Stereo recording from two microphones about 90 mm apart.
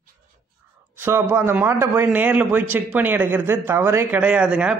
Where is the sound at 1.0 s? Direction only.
25° right (ahead or behind).